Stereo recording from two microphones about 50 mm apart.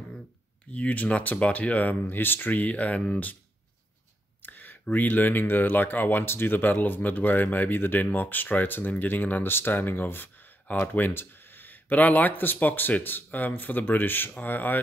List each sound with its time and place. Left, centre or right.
0.7 s speech: left
4.4 s speech: left